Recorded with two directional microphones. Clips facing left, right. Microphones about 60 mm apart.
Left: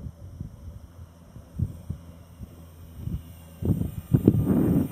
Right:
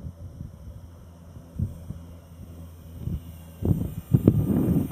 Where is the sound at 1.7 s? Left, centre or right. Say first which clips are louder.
Even; centre.